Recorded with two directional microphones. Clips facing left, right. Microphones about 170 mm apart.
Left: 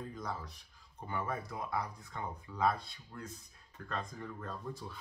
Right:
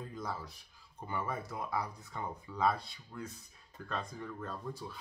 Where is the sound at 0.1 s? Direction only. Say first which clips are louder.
Right 1 dB; 5° right (ahead or behind).